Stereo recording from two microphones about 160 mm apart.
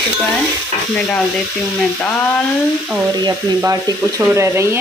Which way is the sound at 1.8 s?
10° left (ahead or behind).